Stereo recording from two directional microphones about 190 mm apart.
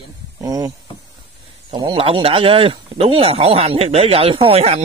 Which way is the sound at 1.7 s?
25° right (ahead or behind).